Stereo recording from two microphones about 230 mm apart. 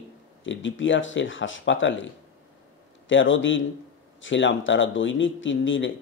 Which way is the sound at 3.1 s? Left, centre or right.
Left.